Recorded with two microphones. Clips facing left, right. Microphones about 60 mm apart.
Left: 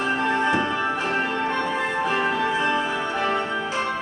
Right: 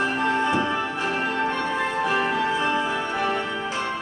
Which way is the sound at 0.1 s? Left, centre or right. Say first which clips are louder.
Left 1 dB; centre.